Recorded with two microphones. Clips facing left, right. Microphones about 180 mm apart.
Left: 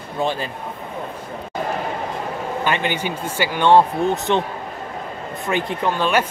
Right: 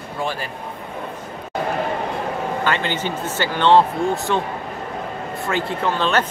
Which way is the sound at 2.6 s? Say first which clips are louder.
Left 3 dB; 15° left (ahead or behind).